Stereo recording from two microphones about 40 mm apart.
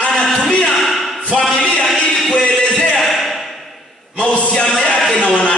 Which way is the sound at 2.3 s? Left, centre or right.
Left.